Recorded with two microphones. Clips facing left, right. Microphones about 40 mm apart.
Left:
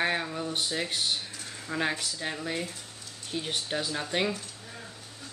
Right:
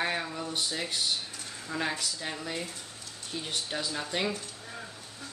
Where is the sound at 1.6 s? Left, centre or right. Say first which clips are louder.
Left 2 dB; left.